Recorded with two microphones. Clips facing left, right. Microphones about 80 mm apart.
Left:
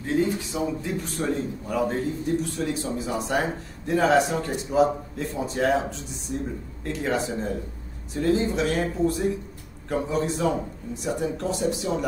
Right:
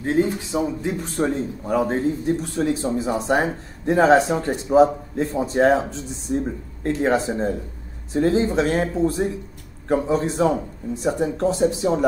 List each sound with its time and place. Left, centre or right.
0.0 s a man's voice: right